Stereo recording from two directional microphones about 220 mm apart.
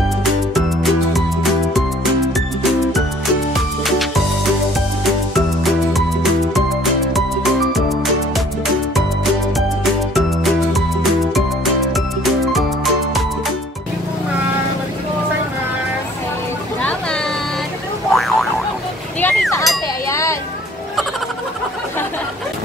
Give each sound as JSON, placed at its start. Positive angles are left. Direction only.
{"t": 0.2, "sound": "music", "side_deg": 0}
{"t": 5.3, "sound": "music", "side_deg": 0}
{"t": 8.9, "sound": "music", "side_deg": 0}
{"t": 18.1, "sound": "boing", "side_deg": 0}
{"t": 19.2, "sound": "a sound", "side_deg": 5}
{"t": 20.1, "sound": "a sound", "side_deg": 15}